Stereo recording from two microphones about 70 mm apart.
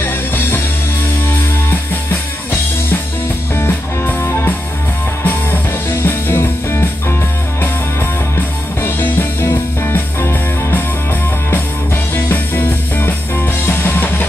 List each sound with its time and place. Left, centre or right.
0.0 s music: left
3.5 s music: left
8.8 s music: left
12.3 s music: left